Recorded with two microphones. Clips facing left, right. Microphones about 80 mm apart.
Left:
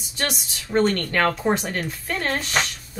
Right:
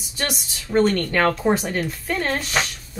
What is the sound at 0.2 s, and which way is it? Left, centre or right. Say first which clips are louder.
Speech: even; centre.